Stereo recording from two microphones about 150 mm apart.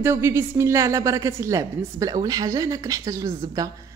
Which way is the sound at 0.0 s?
15° right (ahead or behind).